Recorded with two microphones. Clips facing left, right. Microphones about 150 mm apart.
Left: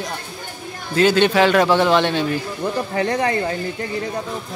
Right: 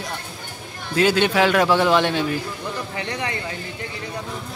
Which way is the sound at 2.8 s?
45° left (ahead or behind).